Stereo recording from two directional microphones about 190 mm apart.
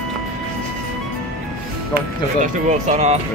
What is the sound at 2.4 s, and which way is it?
Speech, 40° right (ahead or behind).